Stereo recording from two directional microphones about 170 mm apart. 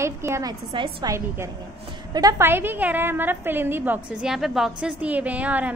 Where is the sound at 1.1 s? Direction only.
15° right (ahead or behind).